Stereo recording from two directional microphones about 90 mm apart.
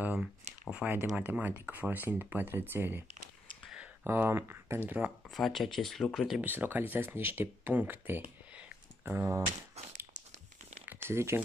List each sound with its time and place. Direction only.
0.0 s a sound: 10° right (ahead or behind)
0.8 s speech: 20° right (ahead or behind)
4.0 s speech: 25° right (ahead or behind)
4.8 s speech: 15° right (ahead or behind)
5.3 s speech: centre (ahead or behind)
6.4 s speech: 20° right (ahead or behind)
8.5 s a sound: 15° right (ahead or behind)
9.1 s speech: 25° right (ahead or behind)
10.9 s speech: 30° right (ahead or behind)